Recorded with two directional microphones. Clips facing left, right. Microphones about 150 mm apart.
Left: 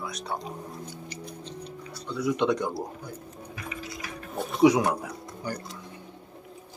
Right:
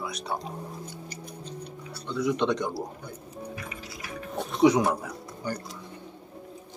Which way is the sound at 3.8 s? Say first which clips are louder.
Right 1 dB; centre (ahead or behind).